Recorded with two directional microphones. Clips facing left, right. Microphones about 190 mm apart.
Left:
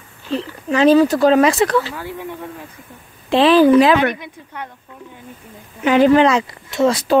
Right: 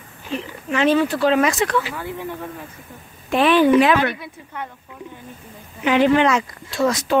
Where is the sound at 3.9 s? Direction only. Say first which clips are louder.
Left 3 dB; 15° left (ahead or behind).